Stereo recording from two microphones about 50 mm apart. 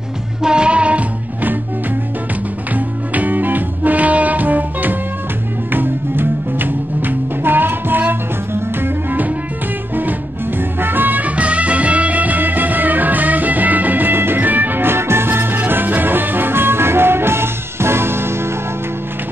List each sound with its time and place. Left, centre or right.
0.4 s music: centre
2.7 s music: right
10.8 s music: right